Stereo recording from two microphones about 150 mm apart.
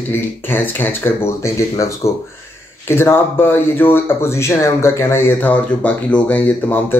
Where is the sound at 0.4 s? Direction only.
15° left (ahead or behind).